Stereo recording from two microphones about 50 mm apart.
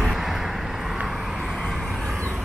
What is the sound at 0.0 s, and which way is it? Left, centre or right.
Vehicle, centre.